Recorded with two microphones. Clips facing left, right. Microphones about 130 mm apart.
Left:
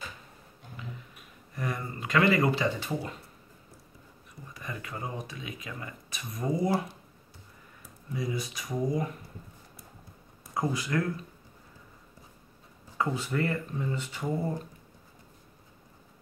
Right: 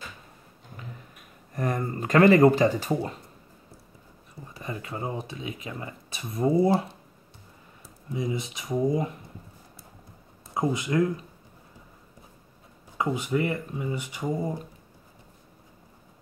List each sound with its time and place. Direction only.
1.5 s speech: 45° right (ahead or behind)
4.6 s speech: 30° right (ahead or behind)
8.1 s speech: 20° right (ahead or behind)
10.5 s speech: 20° right (ahead or behind)
12.9 s speech: 15° right (ahead or behind)